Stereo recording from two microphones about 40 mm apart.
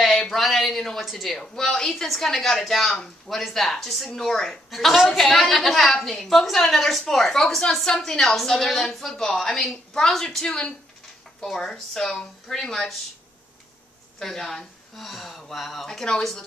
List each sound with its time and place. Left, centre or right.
0.0 s a sound: centre
1.0 s a woman's voice: centre
4.6 s a woman's voice: centre
8.0 s a woman's voice: centre
14.2 s a woman's voice: centre